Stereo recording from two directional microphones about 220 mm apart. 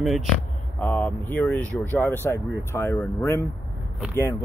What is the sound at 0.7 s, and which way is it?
Speech, 5° left (ahead or behind).